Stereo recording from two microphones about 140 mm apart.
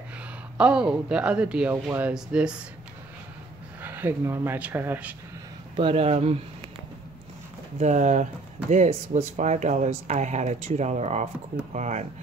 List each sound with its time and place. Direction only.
0.6 s speech: 5° right (ahead or behind)
3.8 s speech: 15° right (ahead or behind)
5.8 s speech: 45° right (ahead or behind)
7.8 s speech: 60° right (ahead or behind)